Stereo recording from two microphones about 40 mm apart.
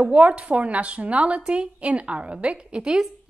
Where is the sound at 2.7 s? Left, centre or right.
Right.